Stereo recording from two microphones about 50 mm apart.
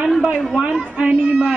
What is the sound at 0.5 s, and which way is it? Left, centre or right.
A woman's voice, centre.